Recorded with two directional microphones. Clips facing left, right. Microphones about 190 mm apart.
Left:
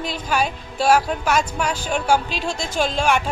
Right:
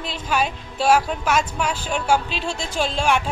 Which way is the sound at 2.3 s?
40° left (ahead or behind).